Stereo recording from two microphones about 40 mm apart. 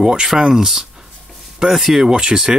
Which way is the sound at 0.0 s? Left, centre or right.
Centre.